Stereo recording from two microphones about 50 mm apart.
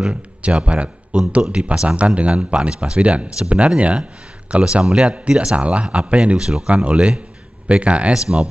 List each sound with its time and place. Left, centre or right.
0.1 s speech: right
4.8 s speech: centre
6.7 s speech: right